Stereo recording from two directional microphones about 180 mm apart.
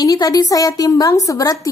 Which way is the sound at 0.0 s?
20° left (ahead or behind).